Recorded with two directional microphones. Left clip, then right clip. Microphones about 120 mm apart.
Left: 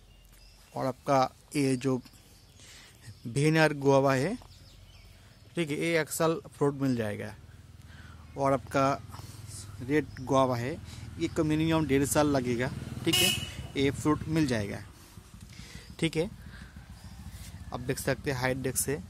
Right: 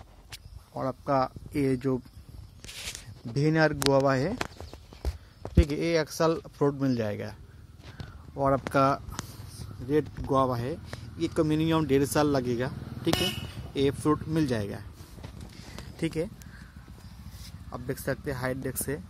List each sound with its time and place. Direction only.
0.7 s speech: 30° left (ahead or behind)
3.3 s speech: 15° left (ahead or behind)
5.5 s speech: 15° right (ahead or behind)
6.0 s speech: 5° right (ahead or behind)
8.4 s speech: 5° left (ahead or behind)
8.7 s speech: 10° right (ahead or behind)
16.0 s speech: 30° left (ahead or behind)
17.9 s speech: 30° left (ahead or behind)